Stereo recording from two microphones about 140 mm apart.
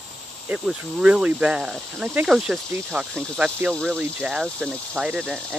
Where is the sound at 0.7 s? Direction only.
5° right (ahead or behind).